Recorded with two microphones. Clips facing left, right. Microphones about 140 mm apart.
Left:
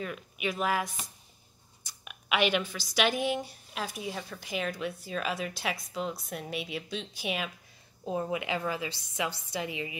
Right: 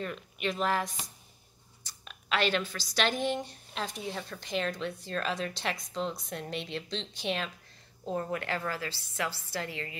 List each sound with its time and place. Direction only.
0.0 s speech: 5° left (ahead or behind)
1.9 s speech: 10° left (ahead or behind)